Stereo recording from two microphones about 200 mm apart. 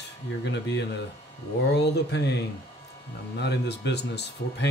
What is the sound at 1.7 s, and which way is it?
Speech, 60° left (ahead or behind).